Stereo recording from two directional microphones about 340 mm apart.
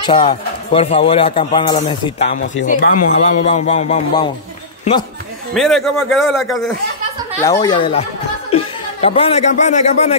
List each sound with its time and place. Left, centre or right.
0.0 s speech: centre
5.5 s a man's voice: centre
7.4 s speech: centre